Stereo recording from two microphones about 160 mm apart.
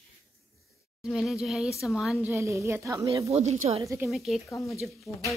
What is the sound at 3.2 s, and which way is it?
Speech, 40° right (ahead or behind).